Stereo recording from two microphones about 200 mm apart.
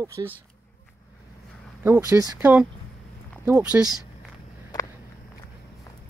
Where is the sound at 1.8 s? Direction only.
10° right (ahead or behind).